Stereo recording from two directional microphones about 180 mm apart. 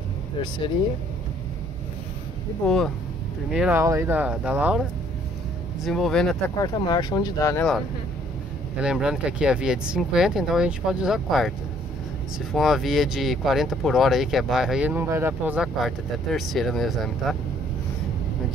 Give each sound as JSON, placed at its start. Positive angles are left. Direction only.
{"t": 2.6, "sound": "speech", "side_deg": 0}
{"t": 3.8, "sound": "speech", "side_deg": -15}
{"t": 6.6, "sound": "speech", "side_deg": 25}
{"t": 8.7, "sound": "speech", "side_deg": -5}
{"t": 12.5, "sound": "speech", "side_deg": 0}